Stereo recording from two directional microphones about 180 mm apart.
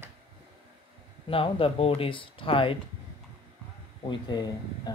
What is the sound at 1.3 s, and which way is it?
Speech, 30° left (ahead or behind).